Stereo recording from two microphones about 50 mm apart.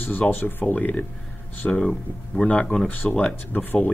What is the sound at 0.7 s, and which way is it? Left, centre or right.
Speech, left.